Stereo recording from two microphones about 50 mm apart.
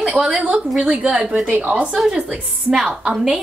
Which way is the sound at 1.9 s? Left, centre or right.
Centre.